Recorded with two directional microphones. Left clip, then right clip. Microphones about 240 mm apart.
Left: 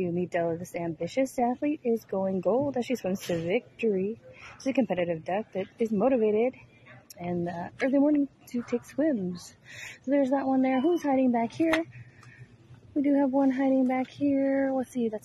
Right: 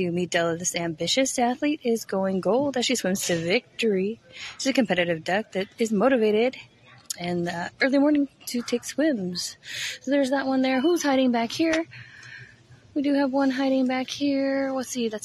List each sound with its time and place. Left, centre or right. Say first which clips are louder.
0.0 s speech: right 4 dB; centre
2.7 s speech: right 5 dB; centre
13.0 s speech: right 2 dB; centre